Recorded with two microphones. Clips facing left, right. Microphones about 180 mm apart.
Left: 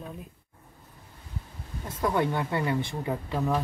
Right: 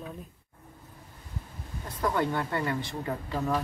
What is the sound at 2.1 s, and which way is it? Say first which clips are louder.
Speech: left 2 dB; 15° left (ahead or behind).